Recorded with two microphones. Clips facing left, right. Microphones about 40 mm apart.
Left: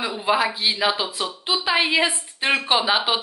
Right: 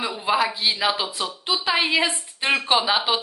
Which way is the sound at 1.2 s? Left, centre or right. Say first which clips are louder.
Left 1 dB; left.